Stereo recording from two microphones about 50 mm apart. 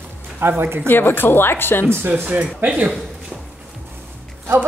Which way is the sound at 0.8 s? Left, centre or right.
Left.